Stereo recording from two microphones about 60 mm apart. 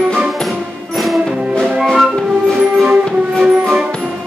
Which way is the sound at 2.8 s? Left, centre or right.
Centre.